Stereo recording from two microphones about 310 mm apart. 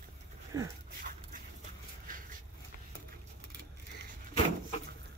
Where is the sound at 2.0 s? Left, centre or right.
Right.